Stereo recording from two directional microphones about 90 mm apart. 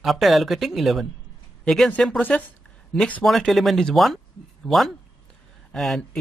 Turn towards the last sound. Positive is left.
turn(degrees=5)  # may be behind; listen again after turning